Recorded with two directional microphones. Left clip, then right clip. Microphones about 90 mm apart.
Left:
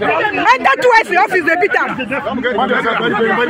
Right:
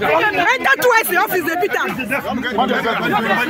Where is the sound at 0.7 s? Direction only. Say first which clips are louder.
Left 3 dB; 35° right (ahead or behind).